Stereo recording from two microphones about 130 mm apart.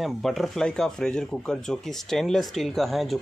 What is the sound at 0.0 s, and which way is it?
Speech, centre (ahead or behind).